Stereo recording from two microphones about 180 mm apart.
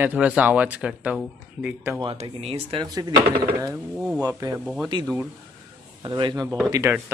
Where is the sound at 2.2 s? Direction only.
30° right (ahead or behind).